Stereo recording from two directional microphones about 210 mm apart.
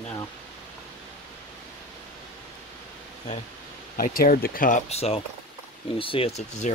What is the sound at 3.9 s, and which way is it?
Speech, 45° left (ahead or behind).